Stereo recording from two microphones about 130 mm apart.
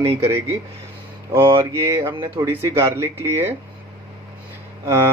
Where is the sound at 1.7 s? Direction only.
20° right (ahead or behind).